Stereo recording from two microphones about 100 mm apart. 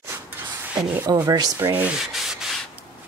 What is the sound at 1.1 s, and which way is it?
Speech, 40° right (ahead or behind).